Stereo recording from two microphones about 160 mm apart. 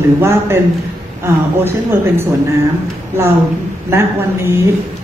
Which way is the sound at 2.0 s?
15° right (ahead or behind).